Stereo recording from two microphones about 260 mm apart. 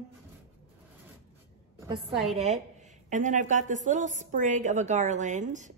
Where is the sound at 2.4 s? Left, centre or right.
Right.